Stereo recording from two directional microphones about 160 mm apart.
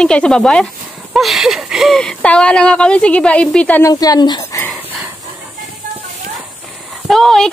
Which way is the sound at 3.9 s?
25° left (ahead or behind).